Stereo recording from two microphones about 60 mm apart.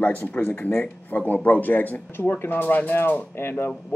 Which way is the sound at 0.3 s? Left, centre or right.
Left.